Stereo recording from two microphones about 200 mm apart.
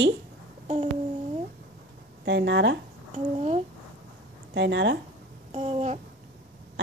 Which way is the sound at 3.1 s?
35° right (ahead or behind).